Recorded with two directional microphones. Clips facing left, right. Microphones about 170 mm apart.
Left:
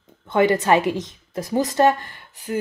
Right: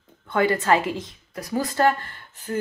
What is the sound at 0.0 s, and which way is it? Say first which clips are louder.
Speech: left 4 dB; 20° left (ahead or behind).